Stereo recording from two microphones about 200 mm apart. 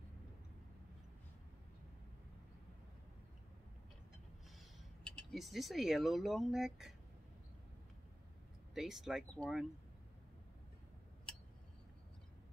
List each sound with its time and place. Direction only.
5.0 s speech: centre (ahead or behind)
8.7 s speech: centre (ahead or behind)
11.3 s tick-tock: 5° left (ahead or behind)